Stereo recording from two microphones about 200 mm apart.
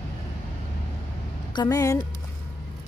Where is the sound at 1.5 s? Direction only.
20° left (ahead or behind).